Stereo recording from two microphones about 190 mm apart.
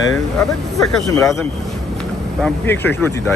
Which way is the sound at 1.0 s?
15° left (ahead or behind).